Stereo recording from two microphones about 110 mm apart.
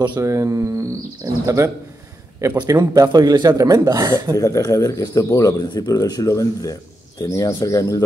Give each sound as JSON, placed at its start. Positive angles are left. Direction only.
{"t": 0.2, "sound": "speech", "side_deg": -30}
{"t": 4.4, "sound": "speech", "side_deg": 30}